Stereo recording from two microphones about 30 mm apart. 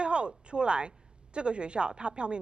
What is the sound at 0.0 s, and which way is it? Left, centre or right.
Speech, right.